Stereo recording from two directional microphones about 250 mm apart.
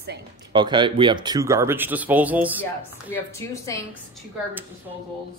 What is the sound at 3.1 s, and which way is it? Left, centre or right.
Speech, centre.